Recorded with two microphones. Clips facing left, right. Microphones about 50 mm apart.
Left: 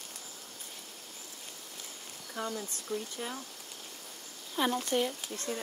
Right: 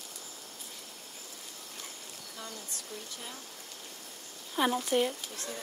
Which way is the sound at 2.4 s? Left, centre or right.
Left.